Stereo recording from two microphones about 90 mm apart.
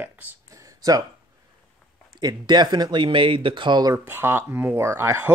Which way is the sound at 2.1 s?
50° right (ahead or behind).